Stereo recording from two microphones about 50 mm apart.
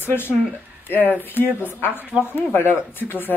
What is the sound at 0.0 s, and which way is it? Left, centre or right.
Speech, left.